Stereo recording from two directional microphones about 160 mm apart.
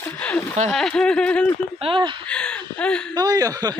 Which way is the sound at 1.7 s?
35° right (ahead or behind).